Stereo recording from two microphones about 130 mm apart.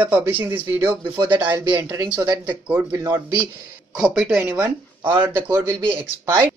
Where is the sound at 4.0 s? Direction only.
5° right (ahead or behind).